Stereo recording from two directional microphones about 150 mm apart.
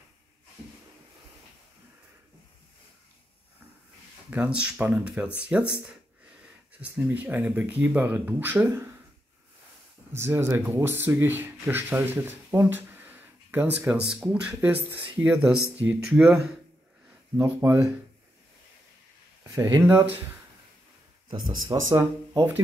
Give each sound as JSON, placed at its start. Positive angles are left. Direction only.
{"t": 4.3, "sound": "speech", "side_deg": -10}
{"t": 10.1, "sound": "speech", "side_deg": -15}
{"t": 17.4, "sound": "speech", "side_deg": -20}
{"t": 19.4, "sound": "speech", "side_deg": -20}
{"t": 21.5, "sound": "speech", "side_deg": -20}